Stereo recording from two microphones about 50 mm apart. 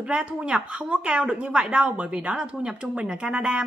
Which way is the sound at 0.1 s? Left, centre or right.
Right.